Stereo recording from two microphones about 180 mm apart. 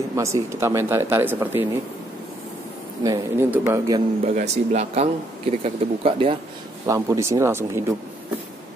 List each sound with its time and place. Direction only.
0.1 s speech: 15° right (ahead or behind)
3.0 s speech: 20° right (ahead or behind)
4.4 s speech: 35° right (ahead or behind)
6.9 s speech: 15° right (ahead or behind)